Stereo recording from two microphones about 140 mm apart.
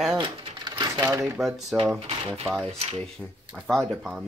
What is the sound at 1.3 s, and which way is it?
Speech, centre (ahead or behind).